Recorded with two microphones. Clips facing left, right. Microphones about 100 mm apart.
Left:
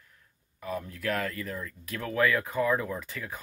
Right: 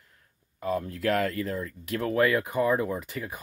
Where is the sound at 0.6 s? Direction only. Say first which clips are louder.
Right 5 dB; 35° right (ahead or behind).